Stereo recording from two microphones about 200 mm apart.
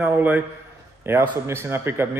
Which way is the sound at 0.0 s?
10° right (ahead or behind).